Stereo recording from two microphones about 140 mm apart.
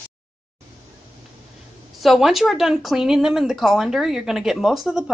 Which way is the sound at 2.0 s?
Centre (ahead or behind).